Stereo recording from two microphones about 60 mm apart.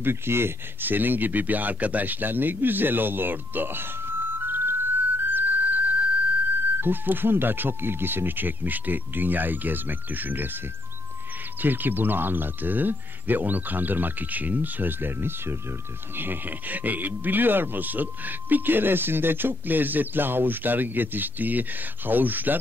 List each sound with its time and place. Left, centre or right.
0.0 s speech: right
11.6 s speech: right